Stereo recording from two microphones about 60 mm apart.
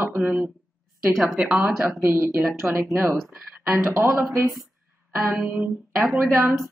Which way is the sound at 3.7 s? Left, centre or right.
Right.